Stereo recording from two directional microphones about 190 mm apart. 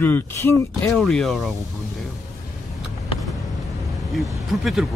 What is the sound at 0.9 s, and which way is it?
Speech, centre (ahead or behind).